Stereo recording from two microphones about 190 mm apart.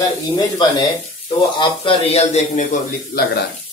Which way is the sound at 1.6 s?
30° left (ahead or behind).